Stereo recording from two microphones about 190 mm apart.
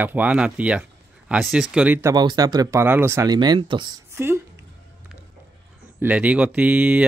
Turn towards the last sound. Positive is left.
turn(degrees=-5)  # may be behind; listen again after turning